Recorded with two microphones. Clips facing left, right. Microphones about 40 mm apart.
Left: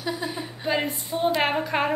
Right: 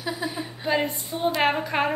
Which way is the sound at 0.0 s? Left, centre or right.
Centre.